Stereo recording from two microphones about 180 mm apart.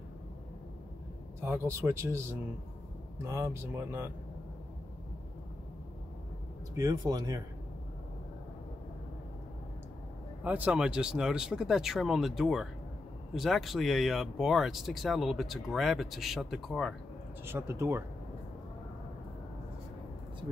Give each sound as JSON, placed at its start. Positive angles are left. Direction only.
{"t": 1.4, "sound": "speech", "side_deg": -15}
{"t": 6.8, "sound": "speech", "side_deg": -20}
{"t": 10.4, "sound": "speech", "side_deg": -10}
{"t": 17.5, "sound": "speech", "side_deg": -15}